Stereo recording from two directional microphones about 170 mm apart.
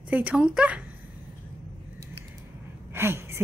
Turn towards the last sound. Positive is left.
turn(degrees=-15)  # may be behind; listen again after turning